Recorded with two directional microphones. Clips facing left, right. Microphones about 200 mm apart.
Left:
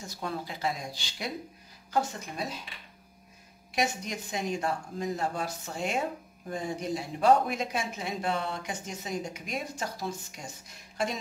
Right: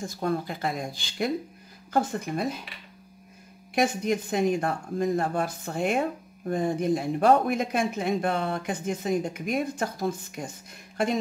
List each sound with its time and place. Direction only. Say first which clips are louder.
0.0 s speech: right 8 dB; 50° right (ahead or behind)
3.7 s speech: right 7 dB; 55° right (ahead or behind)